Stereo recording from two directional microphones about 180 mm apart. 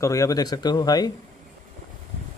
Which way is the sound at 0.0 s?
20° left (ahead or behind).